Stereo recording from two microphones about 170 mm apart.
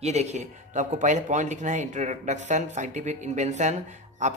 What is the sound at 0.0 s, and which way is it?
Speech, 40° right (ahead or behind).